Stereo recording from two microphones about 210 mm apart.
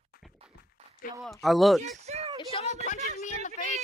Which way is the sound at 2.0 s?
30° right (ahead or behind).